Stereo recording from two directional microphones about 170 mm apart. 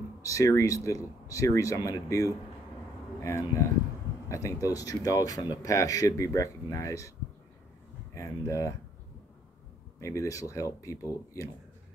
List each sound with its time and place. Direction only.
0.2 s speech: 20° left (ahead or behind)
8.1 s speech: 20° left (ahead or behind)
9.9 s speech: 20° left (ahead or behind)